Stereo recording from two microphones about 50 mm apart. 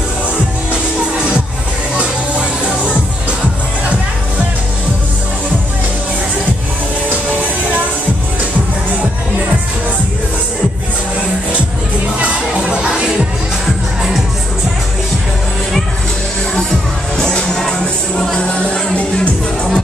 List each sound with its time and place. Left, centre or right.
1.1 s music: right
12.2 s music: centre
17.2 s music: centre